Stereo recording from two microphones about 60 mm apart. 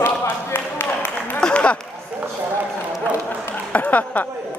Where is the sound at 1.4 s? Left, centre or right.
Centre.